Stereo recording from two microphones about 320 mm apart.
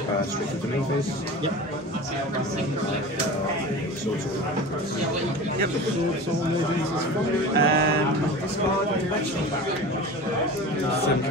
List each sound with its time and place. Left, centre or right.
7.5 s music: right